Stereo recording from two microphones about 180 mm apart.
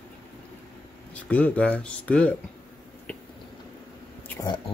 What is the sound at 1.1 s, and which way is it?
Speech, 10° left (ahead or behind).